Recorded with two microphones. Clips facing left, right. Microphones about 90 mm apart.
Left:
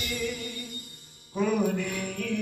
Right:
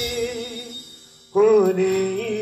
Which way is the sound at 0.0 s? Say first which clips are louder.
Right 7 dB; 60° right (ahead or behind).